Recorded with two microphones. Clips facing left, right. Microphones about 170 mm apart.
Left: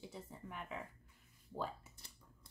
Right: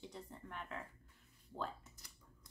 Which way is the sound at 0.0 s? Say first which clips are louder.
Left 1 dB; 5° left (ahead or behind).